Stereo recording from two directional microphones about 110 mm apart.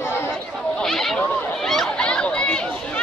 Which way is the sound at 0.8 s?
5° left (ahead or behind).